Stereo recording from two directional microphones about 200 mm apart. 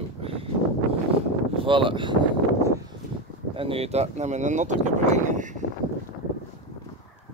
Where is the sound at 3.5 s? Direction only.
25° right (ahead or behind).